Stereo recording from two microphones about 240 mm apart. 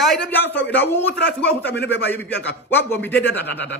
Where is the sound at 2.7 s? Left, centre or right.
Centre.